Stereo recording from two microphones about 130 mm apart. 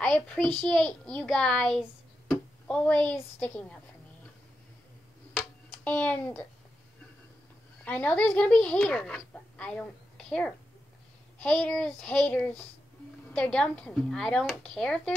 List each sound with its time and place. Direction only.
0.0 s a child's voice: 5° left (ahead or behind)
5.9 s a child's voice: 10° left (ahead or behind)
7.8 s a child's voice: 10° left (ahead or behind)